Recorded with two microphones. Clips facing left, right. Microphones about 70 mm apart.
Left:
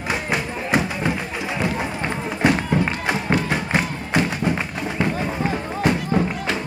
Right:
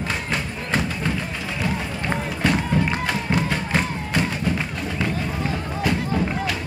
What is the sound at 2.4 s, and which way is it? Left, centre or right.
Music, centre.